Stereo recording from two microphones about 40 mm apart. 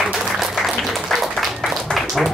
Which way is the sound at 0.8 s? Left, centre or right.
Centre.